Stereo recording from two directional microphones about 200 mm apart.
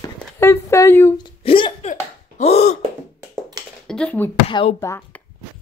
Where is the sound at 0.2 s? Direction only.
10° left (ahead or behind); by 2.8 s 35° left (ahead or behind).